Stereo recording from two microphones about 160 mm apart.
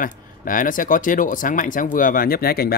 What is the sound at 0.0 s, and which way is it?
Speech, 60° left (ahead or behind).